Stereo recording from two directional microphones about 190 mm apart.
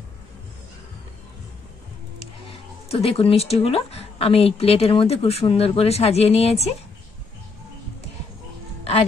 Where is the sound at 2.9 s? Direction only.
30° left (ahead or behind).